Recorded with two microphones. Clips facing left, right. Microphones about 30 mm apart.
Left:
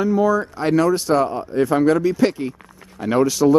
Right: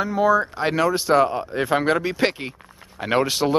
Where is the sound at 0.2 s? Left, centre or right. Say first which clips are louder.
Even; right.